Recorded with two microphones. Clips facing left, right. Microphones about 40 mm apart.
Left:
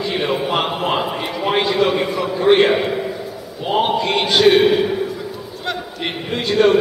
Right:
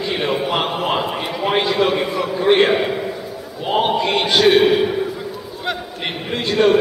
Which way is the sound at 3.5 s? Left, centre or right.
Centre.